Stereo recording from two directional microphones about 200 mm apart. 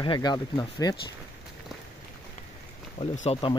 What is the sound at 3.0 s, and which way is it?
Speech, 30° left (ahead or behind).